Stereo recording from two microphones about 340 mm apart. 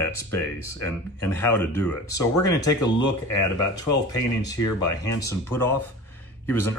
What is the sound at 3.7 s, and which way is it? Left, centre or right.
Speech, left.